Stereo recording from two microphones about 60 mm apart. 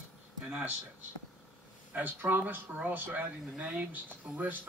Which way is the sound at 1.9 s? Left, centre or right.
Right.